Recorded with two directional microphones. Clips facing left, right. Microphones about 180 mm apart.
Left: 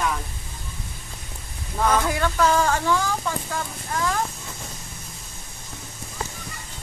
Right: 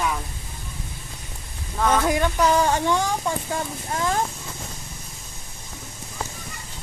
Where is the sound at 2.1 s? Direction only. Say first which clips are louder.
Right 1 dB; 20° right (ahead or behind).